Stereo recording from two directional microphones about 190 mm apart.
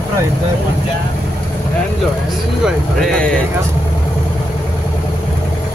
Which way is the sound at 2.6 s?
Centre (ahead or behind).